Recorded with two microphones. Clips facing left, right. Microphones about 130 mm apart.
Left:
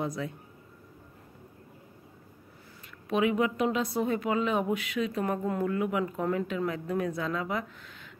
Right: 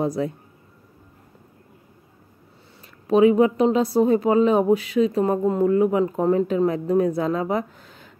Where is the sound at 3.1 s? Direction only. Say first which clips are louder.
Right 11 dB; 35° right (ahead or behind).